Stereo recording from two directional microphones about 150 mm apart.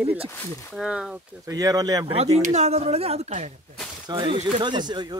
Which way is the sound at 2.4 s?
45° right (ahead or behind).